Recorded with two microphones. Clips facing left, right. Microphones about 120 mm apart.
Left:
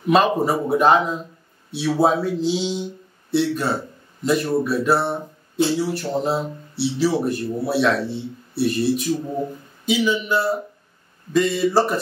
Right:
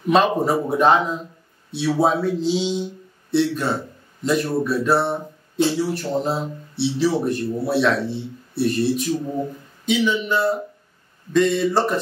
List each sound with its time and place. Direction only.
0.1 s speech: 5° left (ahead or behind)